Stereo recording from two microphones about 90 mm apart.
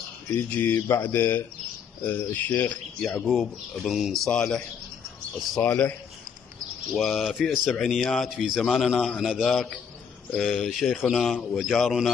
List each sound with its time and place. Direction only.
0.5 s speech: 20° left (ahead or behind)
3.3 s a man's voice: centre (ahead or behind)
5.6 s speech: 15° left (ahead or behind)
6.9 s a man's voice: centre (ahead or behind)